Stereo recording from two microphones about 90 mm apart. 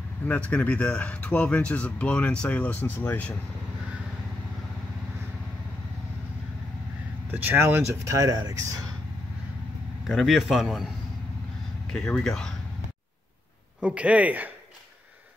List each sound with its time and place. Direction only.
0.2 s speech: 15° left (ahead or behind)
7.2 s speech: 20° right (ahead or behind)
7.5 s speech: 30° right (ahead or behind)
10.0 s a man's voice: centre (ahead or behind)
11.9 s speech: 10° left (ahead or behind)
13.7 s a man's voice: 15° right (ahead or behind)